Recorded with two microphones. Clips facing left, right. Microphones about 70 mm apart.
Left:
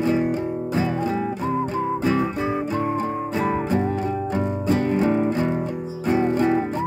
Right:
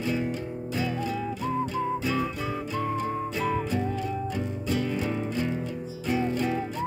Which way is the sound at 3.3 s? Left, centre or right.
Left.